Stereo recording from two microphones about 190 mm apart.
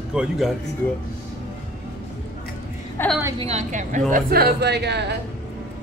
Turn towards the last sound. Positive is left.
turn(degrees=-60)  # may be behind; listen again after turning